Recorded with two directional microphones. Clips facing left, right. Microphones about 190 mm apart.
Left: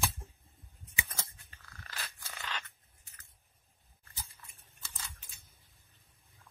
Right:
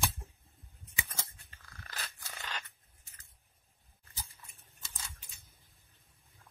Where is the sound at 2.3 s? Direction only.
15° right (ahead or behind).